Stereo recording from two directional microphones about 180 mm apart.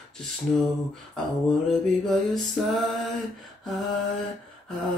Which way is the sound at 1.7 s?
Centre (ahead or behind).